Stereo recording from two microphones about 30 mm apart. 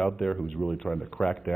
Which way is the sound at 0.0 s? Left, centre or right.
Centre.